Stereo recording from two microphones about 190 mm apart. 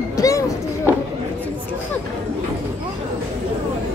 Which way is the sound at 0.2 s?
15° left (ahead or behind).